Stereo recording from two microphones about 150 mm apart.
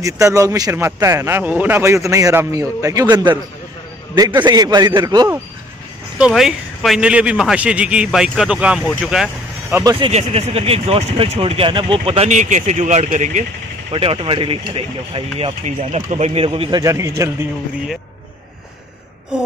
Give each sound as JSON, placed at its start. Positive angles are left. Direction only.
{"t": 0.0, "sound": "a man's voice", "side_deg": -20}
{"t": 6.1, "sound": "a man's voice", "side_deg": -5}
{"t": 9.9, "sound": "speech", "side_deg": -40}
{"t": 13.9, "sound": "speech", "side_deg": -40}
{"t": 16.8, "sound": "speech", "side_deg": -20}